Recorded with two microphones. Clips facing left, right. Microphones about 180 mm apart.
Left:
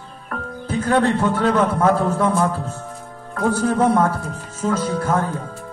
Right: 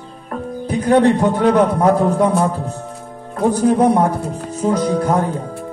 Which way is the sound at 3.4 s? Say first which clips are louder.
Right 4 dB; 15° right (ahead or behind).